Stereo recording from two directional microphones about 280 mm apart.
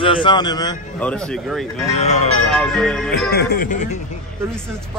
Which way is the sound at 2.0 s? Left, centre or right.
Left.